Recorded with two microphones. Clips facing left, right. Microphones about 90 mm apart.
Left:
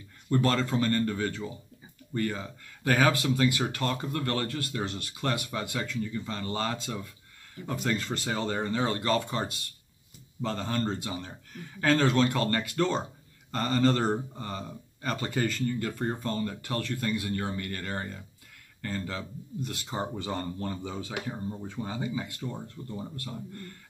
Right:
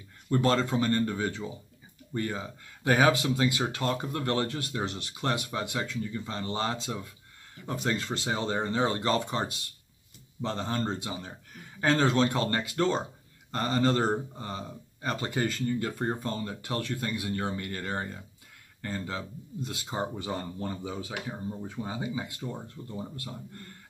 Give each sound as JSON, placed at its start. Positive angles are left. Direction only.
{"t": 0.3, "sound": "speech", "side_deg": -15}